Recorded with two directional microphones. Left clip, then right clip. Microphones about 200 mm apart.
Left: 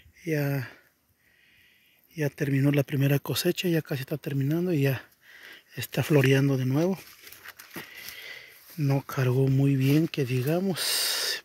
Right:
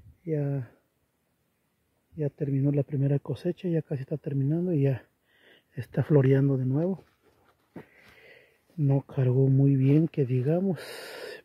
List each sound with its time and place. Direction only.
0.2 s speech: centre (ahead or behind)
2.1 s speech: 5° left (ahead or behind); by 6.1 s 15° right (ahead or behind)
6.5 s speech: centre (ahead or behind)
8.2 s a sound: 10° right (ahead or behind)
9.1 s speech: 15° right (ahead or behind)